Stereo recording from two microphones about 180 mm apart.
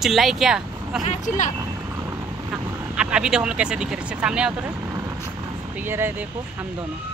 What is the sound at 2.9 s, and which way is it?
Speech, 5° right (ahead or behind).